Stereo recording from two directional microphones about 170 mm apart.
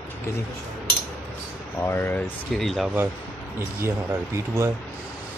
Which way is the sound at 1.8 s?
10° left (ahead or behind).